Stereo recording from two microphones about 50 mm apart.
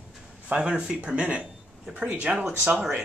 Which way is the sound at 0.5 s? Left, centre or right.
Centre.